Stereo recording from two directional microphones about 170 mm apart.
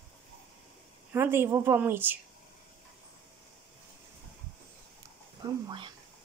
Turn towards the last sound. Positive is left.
turn(degrees=-25)  # may be behind; listen again after turning